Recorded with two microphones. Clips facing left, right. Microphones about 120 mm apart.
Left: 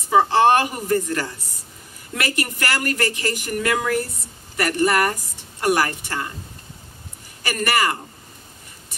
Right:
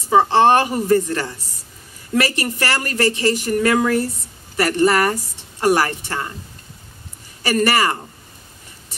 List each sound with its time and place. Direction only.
0.1 s a woman's voice: 25° right (ahead or behind)
7.4 s speech: 35° right (ahead or behind)